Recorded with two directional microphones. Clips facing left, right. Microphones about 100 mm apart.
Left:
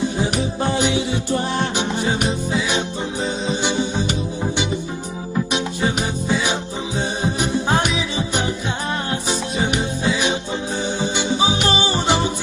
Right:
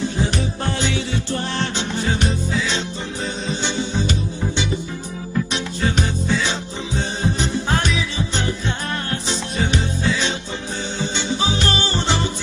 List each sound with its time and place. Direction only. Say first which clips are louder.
0.2 s music: left 2 dB; 15° left (ahead or behind)
3.6 s music: even; 15° left (ahead or behind)